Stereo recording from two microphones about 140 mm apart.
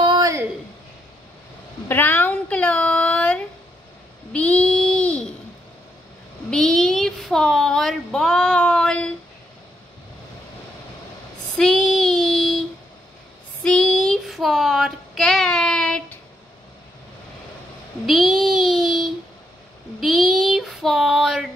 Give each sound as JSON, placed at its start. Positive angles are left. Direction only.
{"t": 0.0, "sound": "a sound", "side_deg": -30}
{"t": 1.9, "sound": "a sound", "side_deg": 15}
{"t": 4.3, "sound": "child singing", "side_deg": 10}
{"t": 6.5, "sound": "child singing", "side_deg": 5}
{"t": 11.5, "sound": "child singing", "side_deg": 0}
{"t": 13.7, "sound": "child singing", "side_deg": 5}
{"t": 18.0, "sound": "child singing", "side_deg": 0}